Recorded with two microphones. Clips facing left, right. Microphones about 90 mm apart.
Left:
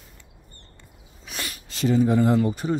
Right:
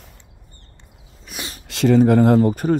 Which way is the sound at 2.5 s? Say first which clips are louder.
Right 6 dB; 50° right (ahead or behind).